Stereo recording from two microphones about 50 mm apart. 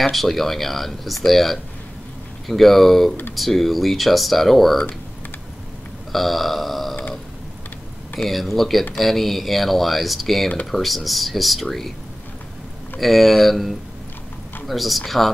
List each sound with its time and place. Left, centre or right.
0.0 s speech: centre
6.1 s speech: centre
8.2 s speech: centre
13.0 s speech: centre